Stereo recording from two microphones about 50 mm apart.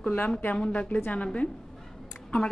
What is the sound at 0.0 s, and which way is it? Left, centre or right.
A woman's voice, left.